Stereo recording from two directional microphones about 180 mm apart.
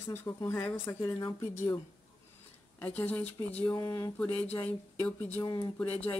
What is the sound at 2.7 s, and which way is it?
Speech, 10° left (ahead or behind).